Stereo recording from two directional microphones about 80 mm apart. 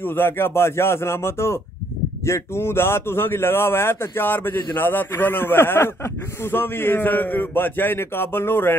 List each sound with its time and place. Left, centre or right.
0.0 s a man's voice: left